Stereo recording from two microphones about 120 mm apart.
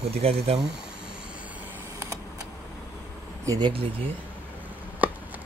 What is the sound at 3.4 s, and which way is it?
Speech, 30° right (ahead or behind).